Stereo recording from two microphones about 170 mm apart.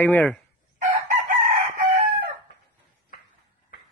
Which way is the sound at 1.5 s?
25° right (ahead or behind).